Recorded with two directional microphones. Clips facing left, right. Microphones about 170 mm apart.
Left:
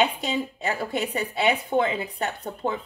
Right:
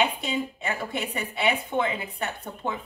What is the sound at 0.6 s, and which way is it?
Speech, 35° left (ahead or behind).